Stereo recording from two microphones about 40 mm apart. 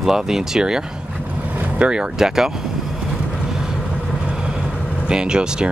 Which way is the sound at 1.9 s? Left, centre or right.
Centre.